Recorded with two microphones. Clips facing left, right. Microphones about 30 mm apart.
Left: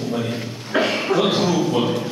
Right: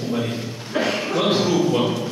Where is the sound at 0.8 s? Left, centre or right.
Centre.